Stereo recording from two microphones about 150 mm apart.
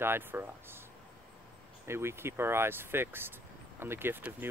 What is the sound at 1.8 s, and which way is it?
Speech, 15° right (ahead or behind).